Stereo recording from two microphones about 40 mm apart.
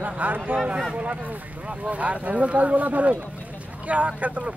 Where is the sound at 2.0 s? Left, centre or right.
Right.